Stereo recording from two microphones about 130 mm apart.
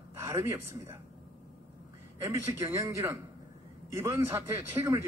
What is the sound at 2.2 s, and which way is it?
A man's voice, 20° right (ahead or behind).